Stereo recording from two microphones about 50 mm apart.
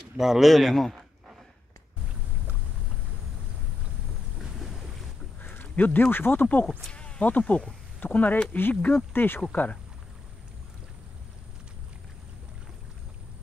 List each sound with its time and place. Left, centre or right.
0.2 s speech: centre
0.5 s a man's voice: centre
4.4 s boat: centre
5.4 s speech: left
6.4 s speech: left
6.9 s a sound: left
7.2 s speech: left
9.5 s speech: left